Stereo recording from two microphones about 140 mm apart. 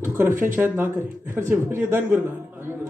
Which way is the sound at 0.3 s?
70° right (ahead or behind).